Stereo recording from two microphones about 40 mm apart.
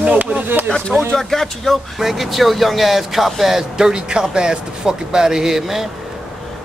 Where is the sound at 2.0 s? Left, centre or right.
Centre.